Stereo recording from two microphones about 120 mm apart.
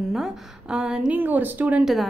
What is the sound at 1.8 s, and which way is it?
Speech, centre (ahead or behind).